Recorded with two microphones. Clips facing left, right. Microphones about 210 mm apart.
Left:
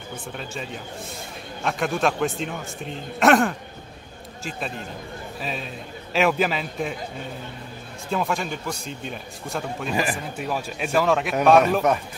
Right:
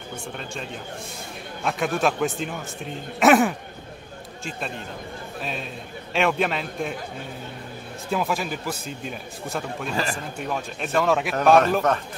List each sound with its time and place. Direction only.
0.1 s a man's voice: centre (ahead or behind)
8.1 s a man's voice: 5° right (ahead or behind)
9.9 s speech: 15° left (ahead or behind)
10.3 s a man's voice: 5° left (ahead or behind)